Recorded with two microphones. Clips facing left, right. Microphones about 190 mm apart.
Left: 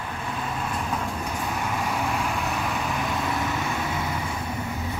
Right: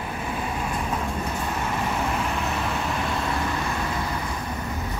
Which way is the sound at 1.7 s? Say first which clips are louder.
Right 1 dB; 5° left (ahead or behind).